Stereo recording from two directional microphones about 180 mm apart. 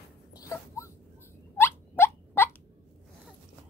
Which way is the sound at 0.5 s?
15° left (ahead or behind).